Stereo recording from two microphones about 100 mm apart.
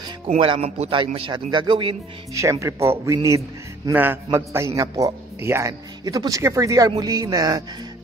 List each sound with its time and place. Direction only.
0.4 s speech: 75° right (ahead or behind)
0.9 s speech: 55° right (ahead or behind)
2.6 s a man's voice: 30° right (ahead or behind)
3.9 s a man's voice: 20° right (ahead or behind)
5.7 s a man's voice: 40° right (ahead or behind)